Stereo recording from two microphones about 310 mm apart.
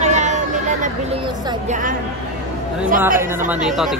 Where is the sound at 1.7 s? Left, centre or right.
Right.